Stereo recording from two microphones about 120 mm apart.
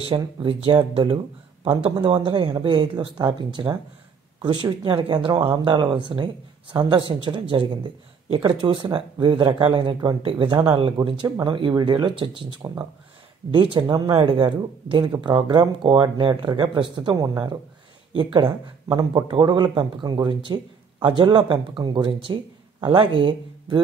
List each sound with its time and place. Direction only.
0.1 s speech: 45° right (ahead or behind)
14.1 s speech: 45° right (ahead or behind)